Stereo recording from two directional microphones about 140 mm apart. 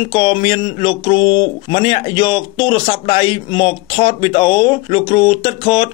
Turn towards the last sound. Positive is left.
turn(degrees=35)  # may be behind; listen again after turning